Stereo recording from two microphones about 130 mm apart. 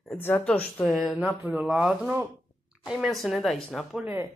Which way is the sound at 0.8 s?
Centre (ahead or behind).